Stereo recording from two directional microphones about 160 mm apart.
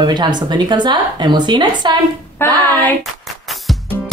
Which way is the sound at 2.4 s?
15° left (ahead or behind).